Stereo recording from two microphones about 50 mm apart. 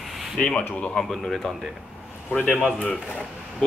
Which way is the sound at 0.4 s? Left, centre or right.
Left.